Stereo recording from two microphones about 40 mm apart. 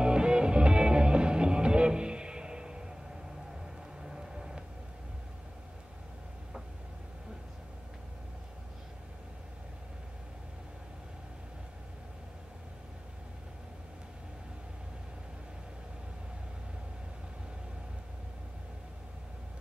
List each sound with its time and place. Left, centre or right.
0.0 s music: right
4.0 s vehicle: centre